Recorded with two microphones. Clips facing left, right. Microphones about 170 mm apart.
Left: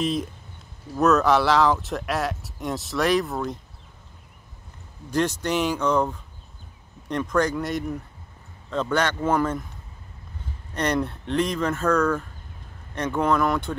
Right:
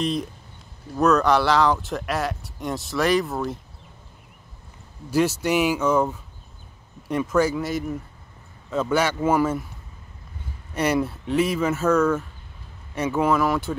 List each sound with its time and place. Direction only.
0.0 s speech: centre (ahead or behind)
5.1 s speech: 5° right (ahead or behind)
10.7 s speech: 5° right (ahead or behind)